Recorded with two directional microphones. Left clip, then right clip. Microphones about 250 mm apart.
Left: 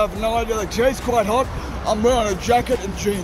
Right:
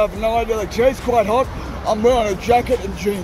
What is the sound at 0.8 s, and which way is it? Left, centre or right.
Speech, left.